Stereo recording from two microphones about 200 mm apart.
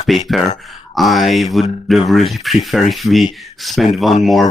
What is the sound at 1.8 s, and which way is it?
Speech, centre (ahead or behind).